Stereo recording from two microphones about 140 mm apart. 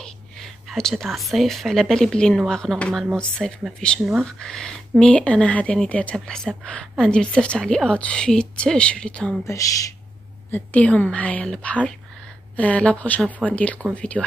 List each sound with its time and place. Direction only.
0.0 s speech: 5° left (ahead or behind)
9.5 s speech: 25° left (ahead or behind)
10.5 s speech: 10° left (ahead or behind)